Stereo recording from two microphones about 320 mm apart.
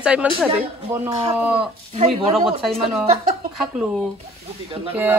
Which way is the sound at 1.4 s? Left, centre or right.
Centre.